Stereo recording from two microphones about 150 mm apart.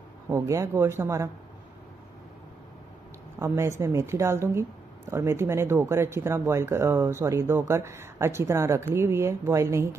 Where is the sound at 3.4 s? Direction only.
20° right (ahead or behind).